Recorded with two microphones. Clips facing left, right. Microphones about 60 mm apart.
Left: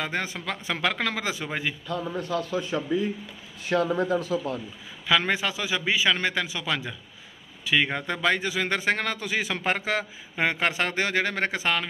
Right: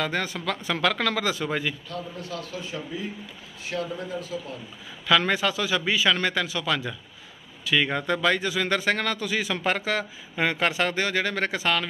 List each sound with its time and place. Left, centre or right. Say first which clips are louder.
0.0 s a man's voice: right 2 dB; left
3.6 s a man's voice: left 6 dB; left
4.1 s a man's voice: left 7 dB; left
5.0 s a man's voice: right 2 dB; centre